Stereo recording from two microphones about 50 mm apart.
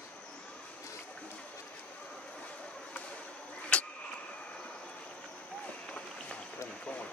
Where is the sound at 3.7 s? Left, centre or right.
Left.